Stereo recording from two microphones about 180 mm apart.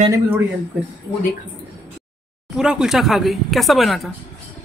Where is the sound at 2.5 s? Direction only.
5° right (ahead or behind).